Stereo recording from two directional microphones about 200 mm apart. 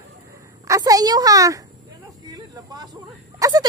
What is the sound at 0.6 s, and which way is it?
Speech, 15° right (ahead or behind).